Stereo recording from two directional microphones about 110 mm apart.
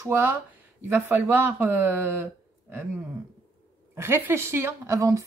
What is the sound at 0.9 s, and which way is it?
Speech, 20° right (ahead or behind).